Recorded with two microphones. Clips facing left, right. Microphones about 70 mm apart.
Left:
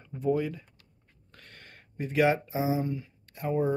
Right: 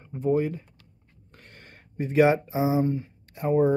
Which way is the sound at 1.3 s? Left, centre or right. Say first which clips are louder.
Right 2 dB; right.